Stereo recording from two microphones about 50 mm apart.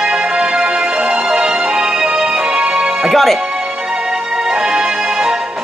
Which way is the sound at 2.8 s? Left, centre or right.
Centre.